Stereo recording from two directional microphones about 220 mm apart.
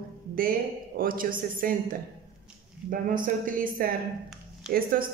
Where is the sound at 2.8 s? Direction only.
40° right (ahead or behind).